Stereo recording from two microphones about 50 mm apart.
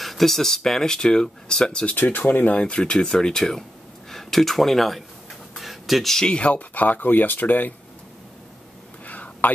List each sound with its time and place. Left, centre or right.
0.0 s speech: centre
2.0 s speech: left
2.5 s speech: left; by 5.0 s centre
5.5 s a sound: centre
6.1 s speech: centre; by 7.7 s left
9.0 s a sound: left